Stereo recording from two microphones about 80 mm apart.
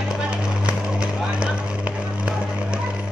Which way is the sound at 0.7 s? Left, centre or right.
Centre.